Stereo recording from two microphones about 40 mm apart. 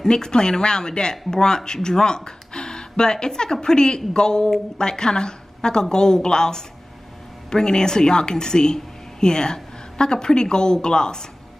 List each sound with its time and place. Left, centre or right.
0.0 s a woman's voice: centre